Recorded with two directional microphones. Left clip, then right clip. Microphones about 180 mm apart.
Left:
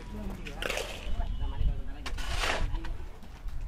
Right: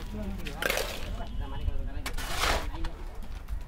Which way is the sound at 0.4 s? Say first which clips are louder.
Right 4 dB; 20° right (ahead or behind).